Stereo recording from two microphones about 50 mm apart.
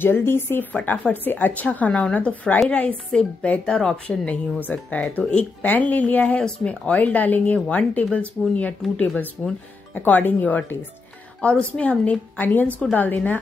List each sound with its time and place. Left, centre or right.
0.0 s speech: left
0.7 s speech: left
3.6 s speech: centre
4.3 s speech: left; by 6.8 s centre
6.9 s speech: left
9.9 s speech: left
11.7 s speech: left
12.4 s speech: left